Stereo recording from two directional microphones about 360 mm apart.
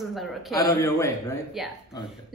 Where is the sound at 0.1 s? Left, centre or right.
Centre.